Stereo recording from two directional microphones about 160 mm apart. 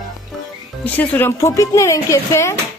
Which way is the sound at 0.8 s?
10° left (ahead or behind).